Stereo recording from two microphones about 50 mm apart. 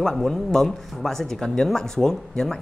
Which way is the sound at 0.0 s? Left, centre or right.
Centre.